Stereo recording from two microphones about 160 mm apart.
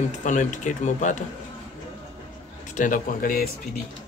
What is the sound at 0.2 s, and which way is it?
Speech, 50° left (ahead or behind).